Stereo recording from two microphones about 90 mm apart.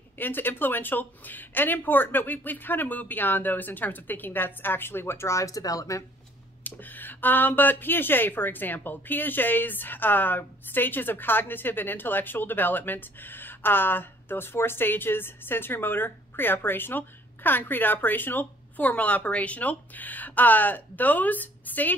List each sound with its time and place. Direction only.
0.2 s speech: 20° left (ahead or behind); by 6.0 s 40° left (ahead or behind)
6.6 s speech: 20° left (ahead or behind)